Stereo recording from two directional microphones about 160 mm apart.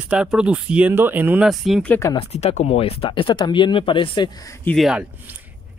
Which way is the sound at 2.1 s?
40° left (ahead or behind).